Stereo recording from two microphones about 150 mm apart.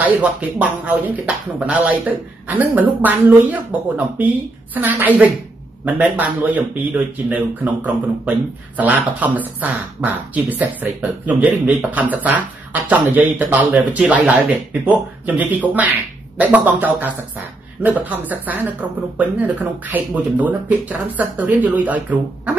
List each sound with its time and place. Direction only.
0.0 s speech: 10° right (ahead or behind)